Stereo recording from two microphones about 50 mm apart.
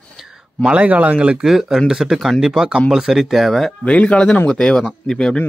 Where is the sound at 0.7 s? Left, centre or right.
Right.